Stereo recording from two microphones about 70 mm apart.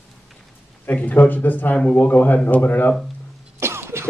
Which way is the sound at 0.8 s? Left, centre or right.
Left.